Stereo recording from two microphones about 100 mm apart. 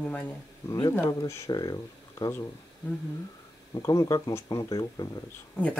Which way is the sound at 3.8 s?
35° left (ahead or behind).